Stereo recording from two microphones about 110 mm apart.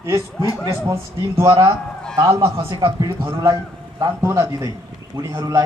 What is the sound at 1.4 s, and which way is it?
Speech, 45° right (ahead or behind).